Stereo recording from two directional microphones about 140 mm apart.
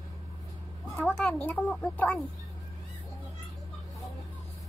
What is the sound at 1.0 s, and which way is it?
Speech, 5° left (ahead or behind).